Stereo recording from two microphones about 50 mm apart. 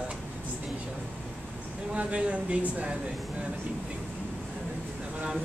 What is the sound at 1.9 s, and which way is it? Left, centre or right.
Speech, right.